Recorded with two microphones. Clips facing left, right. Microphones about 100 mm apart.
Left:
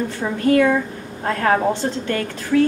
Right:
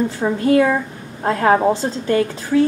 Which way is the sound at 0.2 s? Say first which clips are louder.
Right 1 dB; 25° right (ahead or behind).